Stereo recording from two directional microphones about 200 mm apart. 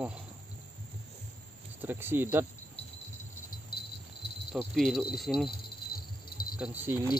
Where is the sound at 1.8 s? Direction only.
10° right (ahead or behind).